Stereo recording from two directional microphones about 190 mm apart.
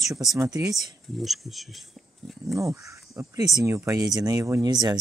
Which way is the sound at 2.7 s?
15° right (ahead or behind).